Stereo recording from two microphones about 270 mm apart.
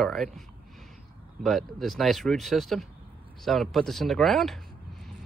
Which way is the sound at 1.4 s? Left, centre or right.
Centre.